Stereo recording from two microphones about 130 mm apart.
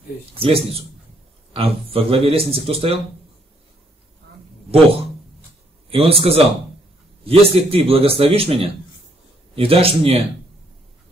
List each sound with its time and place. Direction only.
0.3 s speech: 45° right (ahead or behind)
5.9 s speech: 45° right (ahead or behind)